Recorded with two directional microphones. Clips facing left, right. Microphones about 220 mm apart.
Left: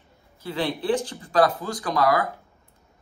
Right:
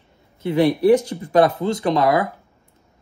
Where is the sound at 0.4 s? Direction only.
25° right (ahead or behind).